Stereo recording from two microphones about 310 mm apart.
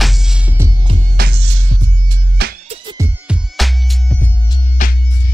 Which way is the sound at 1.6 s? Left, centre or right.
Right.